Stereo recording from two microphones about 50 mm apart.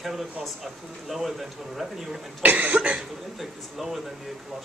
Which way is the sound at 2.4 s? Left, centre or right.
Right.